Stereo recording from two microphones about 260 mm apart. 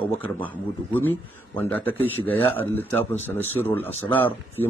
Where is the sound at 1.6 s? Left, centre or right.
Centre.